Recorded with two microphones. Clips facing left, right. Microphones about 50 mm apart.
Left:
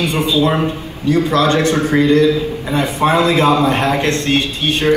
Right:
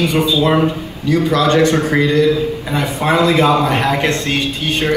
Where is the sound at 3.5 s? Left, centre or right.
Right.